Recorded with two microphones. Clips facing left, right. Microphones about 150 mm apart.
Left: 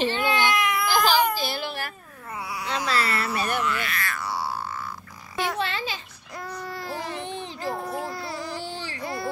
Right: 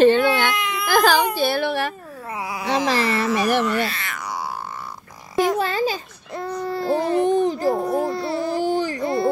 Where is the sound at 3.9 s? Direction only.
20° right (ahead or behind).